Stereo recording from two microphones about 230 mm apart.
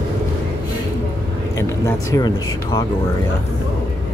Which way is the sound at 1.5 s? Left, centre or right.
Centre.